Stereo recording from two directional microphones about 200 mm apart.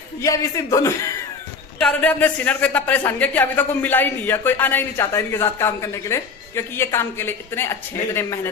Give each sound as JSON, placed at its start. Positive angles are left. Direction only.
{"t": 0.2, "sound": "a man's voice", "side_deg": 15}
{"t": 1.8, "sound": "a man's voice", "side_deg": 5}